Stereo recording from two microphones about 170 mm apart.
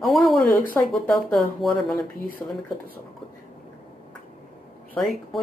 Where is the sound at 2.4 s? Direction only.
15° left (ahead or behind).